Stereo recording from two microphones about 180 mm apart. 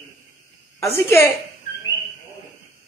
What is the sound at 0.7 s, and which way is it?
Speech, 15° left (ahead or behind).